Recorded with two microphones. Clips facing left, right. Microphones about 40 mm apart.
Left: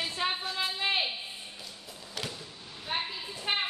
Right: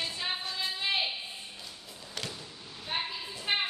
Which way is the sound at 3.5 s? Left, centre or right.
Centre.